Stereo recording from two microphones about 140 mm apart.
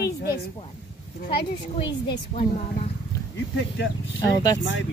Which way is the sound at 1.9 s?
30° left (ahead or behind).